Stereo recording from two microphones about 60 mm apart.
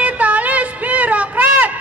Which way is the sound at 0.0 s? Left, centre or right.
Right.